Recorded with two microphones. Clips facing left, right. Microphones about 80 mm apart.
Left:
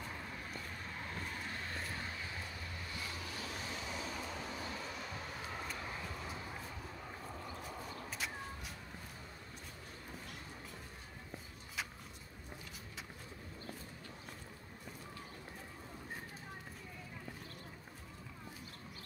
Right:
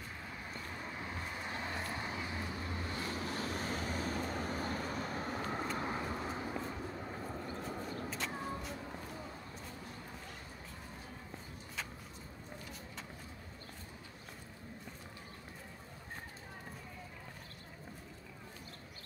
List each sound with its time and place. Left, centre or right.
0.9 s vehicle: centre
2.9 s vehicle: right
8.1 s a sound: centre